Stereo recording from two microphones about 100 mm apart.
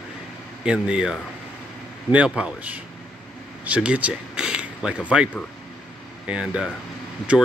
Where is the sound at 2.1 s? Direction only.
10° right (ahead or behind).